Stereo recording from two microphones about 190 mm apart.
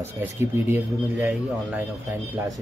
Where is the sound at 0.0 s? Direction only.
10° right (ahead or behind).